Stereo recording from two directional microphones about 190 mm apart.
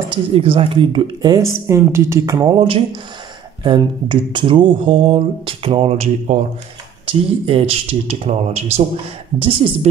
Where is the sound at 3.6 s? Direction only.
25° right (ahead or behind).